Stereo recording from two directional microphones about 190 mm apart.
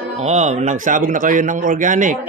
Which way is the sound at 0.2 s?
35° right (ahead or behind).